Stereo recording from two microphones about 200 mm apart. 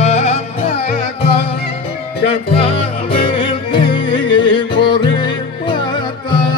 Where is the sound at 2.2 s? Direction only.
30° left (ahead or behind).